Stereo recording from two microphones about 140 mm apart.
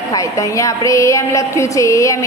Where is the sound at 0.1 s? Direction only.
25° left (ahead or behind).